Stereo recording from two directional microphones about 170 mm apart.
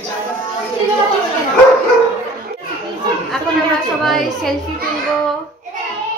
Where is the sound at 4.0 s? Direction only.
Centre (ahead or behind).